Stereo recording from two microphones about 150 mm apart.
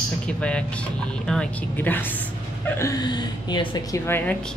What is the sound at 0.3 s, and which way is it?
Speech, 5° left (ahead or behind).